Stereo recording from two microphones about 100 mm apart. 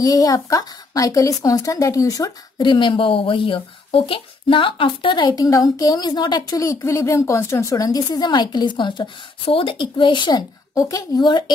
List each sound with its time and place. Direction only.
0.0 s a woman's voice: 40° left (ahead or behind)
2.6 s speech: 55° left (ahead or behind)
5.3 s a woman's voice: 35° left (ahead or behind)
10.7 s a woman's voice: 35° left (ahead or behind)